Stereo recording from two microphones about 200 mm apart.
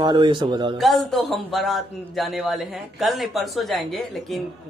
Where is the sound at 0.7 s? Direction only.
Centre (ahead or behind).